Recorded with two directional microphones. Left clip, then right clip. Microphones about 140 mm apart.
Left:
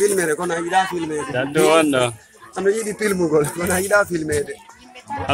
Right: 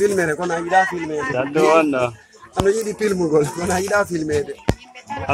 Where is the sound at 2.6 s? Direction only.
40° right (ahead or behind).